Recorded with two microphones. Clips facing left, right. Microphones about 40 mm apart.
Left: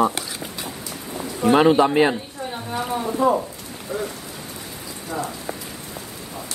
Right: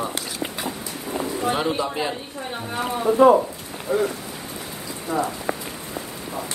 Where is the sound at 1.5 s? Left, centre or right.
Left.